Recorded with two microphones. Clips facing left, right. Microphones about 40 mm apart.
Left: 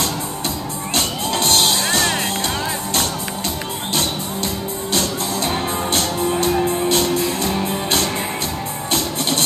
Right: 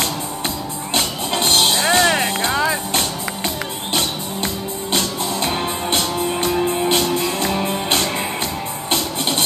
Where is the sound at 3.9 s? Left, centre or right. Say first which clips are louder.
Right 1 dB; right.